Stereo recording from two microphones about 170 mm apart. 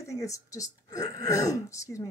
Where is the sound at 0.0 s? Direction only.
20° left (ahead or behind).